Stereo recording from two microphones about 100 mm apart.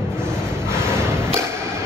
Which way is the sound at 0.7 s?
25° right (ahead or behind).